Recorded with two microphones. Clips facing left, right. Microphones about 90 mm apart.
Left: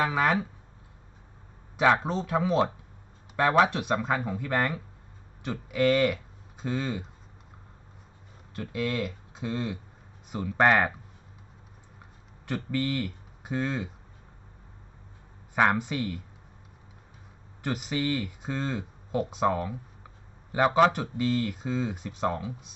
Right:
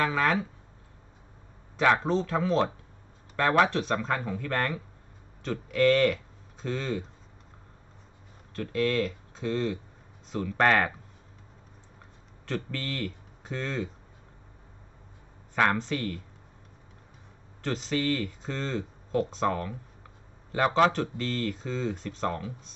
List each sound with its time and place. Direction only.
0.0 s speech: 15° left (ahead or behind)
1.8 s speech: 15° left (ahead or behind)
8.5 s speech: 10° left (ahead or behind)
12.4 s speech: 15° left (ahead or behind)
15.5 s speech: 15° left (ahead or behind)
17.6 s speech: 10° left (ahead or behind)